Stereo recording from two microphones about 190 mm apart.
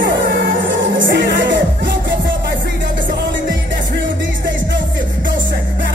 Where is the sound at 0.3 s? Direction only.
75° right (ahead or behind).